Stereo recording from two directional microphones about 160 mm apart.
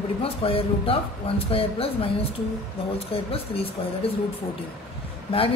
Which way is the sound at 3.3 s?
35° left (ahead or behind).